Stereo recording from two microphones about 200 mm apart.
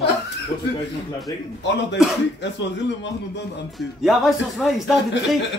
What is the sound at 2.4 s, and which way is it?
A man's voice, 60° left (ahead or behind).